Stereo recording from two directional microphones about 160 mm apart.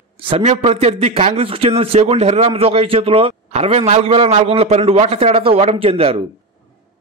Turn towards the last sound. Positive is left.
turn(degrees=-35)  # may be behind; listen again after turning